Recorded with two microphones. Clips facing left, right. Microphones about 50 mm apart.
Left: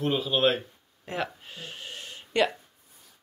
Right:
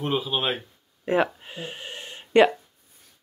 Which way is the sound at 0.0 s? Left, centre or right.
Centre.